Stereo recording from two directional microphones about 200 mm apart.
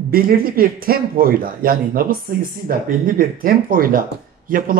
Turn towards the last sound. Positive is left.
turn(degrees=-45)  # may be behind; listen again after turning